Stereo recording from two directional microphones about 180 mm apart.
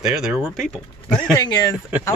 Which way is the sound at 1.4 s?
20° left (ahead or behind).